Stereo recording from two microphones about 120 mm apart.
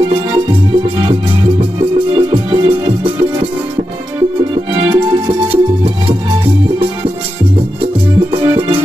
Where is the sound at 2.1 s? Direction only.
45° right (ahead or behind).